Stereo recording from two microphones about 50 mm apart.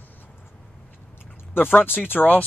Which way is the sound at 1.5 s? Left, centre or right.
Left.